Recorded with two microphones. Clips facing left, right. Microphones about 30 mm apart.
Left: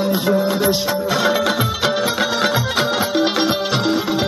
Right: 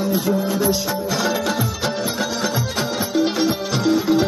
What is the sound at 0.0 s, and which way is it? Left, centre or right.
Music, left.